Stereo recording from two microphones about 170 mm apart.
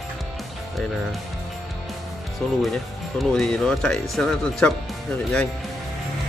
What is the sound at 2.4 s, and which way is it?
Speech, 5° left (ahead or behind).